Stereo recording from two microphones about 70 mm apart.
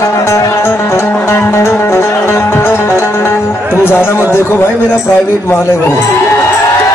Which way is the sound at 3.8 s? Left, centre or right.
Left.